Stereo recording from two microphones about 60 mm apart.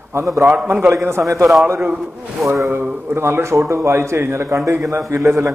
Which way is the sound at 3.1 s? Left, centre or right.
Right.